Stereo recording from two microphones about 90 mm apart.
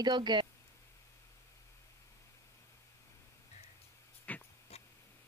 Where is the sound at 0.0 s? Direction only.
55° right (ahead or behind).